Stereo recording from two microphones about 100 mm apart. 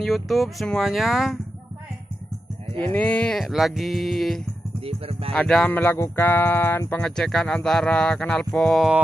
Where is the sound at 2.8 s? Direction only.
15° left (ahead or behind).